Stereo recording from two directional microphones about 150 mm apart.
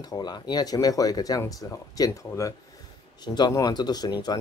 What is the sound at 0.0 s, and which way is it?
Speech, 25° left (ahead or behind).